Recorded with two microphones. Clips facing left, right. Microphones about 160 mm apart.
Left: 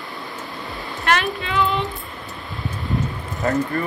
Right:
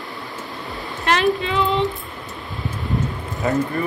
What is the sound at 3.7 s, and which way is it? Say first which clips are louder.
Speech: right 1 dB; 5° right (ahead or behind).